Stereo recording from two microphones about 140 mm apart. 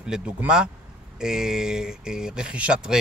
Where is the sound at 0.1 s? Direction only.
5° right (ahead or behind).